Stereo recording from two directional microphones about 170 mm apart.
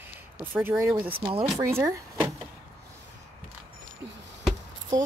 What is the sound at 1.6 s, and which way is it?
Speech, 15° right (ahead or behind).